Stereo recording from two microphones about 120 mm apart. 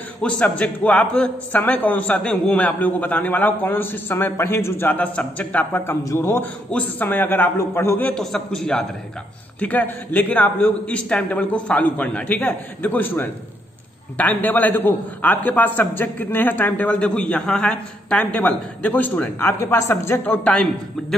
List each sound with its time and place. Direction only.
0.2 s a man's voice: 10° left (ahead or behind)
8.1 s a man's voice: 5° left (ahead or behind)